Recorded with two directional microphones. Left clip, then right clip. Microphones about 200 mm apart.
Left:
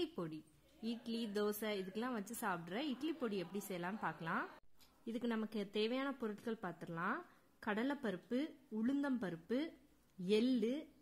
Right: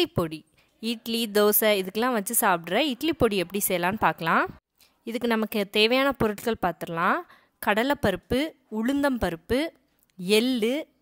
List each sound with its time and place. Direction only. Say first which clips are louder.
0.0 s a woman's voice: right 17 dB; 40° right (ahead or behind)